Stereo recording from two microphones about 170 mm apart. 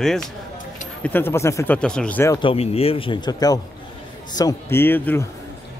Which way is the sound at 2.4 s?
35° left (ahead or behind).